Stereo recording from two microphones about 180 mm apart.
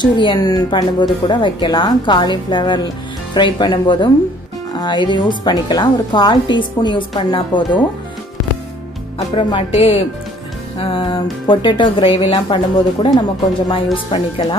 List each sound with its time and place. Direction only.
0.0 s a woman's voice: 25° left (ahead or behind)
9.3 s a woman's voice: 30° left (ahead or behind)